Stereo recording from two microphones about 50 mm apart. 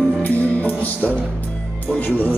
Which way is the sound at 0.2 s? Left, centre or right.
Left.